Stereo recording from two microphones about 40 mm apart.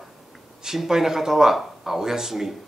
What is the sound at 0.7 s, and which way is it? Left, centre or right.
Speech, centre.